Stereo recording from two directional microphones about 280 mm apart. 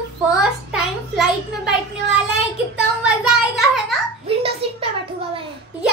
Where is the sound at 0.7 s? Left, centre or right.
Centre.